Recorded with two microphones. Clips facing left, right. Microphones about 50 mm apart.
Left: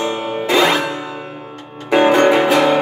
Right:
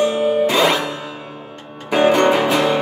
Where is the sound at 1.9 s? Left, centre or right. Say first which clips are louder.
Left 2 dB; left.